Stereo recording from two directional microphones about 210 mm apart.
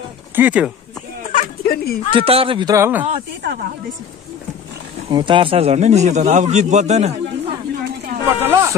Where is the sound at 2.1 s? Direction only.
25° right (ahead or behind).